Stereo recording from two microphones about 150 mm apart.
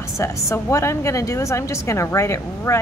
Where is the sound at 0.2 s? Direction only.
20° left (ahead or behind).